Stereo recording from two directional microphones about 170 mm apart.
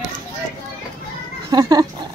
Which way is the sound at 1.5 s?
25° right (ahead or behind).